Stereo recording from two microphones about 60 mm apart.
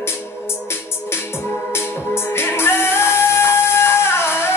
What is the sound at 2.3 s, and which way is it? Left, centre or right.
Music, left.